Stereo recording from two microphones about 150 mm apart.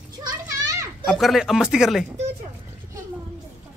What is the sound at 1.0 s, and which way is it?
A man's voice, centre (ahead or behind).